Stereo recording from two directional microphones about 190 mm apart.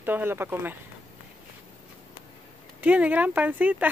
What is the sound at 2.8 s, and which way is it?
Speech, 10° right (ahead or behind).